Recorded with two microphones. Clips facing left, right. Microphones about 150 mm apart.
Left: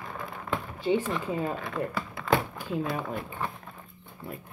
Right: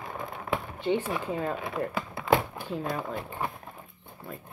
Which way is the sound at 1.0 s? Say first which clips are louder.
Left 1 dB; 10° right (ahead or behind).